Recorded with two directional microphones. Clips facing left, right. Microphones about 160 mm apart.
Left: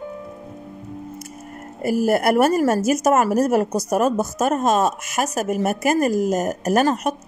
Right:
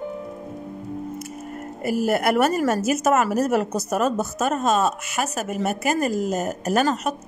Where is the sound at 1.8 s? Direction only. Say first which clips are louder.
Left 3 dB; 40° left (ahead or behind).